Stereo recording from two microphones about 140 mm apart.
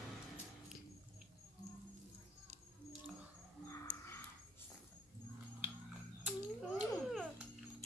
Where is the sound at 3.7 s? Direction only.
20° left (ahead or behind).